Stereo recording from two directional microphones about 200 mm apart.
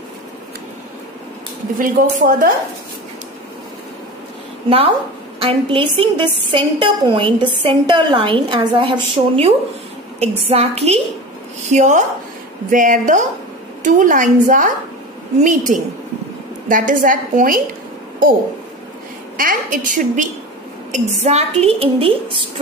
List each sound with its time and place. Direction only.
1.8 s speech: 45° right (ahead or behind)
5.4 s a woman's voice: 25° right (ahead or behind); by 17.6 s 40° right (ahead or behind)
19.3 s a woman's voice: 40° right (ahead or behind); by 22.4 s 25° right (ahead or behind)